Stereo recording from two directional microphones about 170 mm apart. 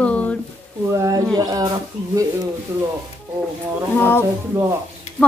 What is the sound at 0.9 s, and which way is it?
Speech, 20° right (ahead or behind).